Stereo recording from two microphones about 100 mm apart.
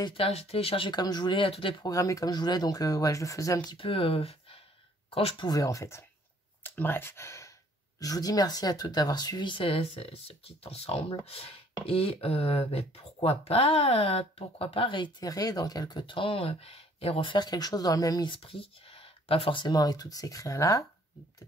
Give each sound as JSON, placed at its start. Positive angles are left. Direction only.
{"t": 0.1, "sound": "speech", "side_deg": 75}
{"t": 0.9, "sound": "speech", "side_deg": 45}
{"t": 1.9, "sound": "speech", "side_deg": 35}
{"t": 3.7, "sound": "speech", "side_deg": 65}
{"t": 5.5, "sound": "speech", "side_deg": 35}
{"t": 6.6, "sound": "speech", "side_deg": 20}
{"t": 8.0, "sound": "speech", "side_deg": 40}
{"t": 15.2, "sound": "speech", "side_deg": 35}
{"t": 18.3, "sound": "speech", "side_deg": 65}
{"t": 19.6, "sound": "speech", "side_deg": 40}